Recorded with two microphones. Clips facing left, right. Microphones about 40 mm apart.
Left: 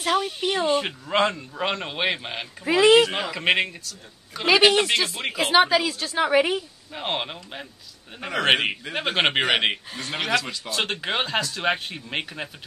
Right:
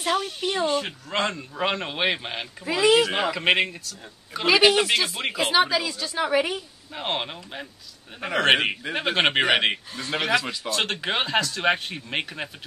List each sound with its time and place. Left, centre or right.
0.0 s a woman's voice: centre
0.7 s speech: left
1.1 s a woman's voice: centre
1.6 s speech: centre
2.6 s speech: left
3.1 s speech: centre
5.5 s a woman's voice: centre
6.9 s speech: centre
10.7 s speech: centre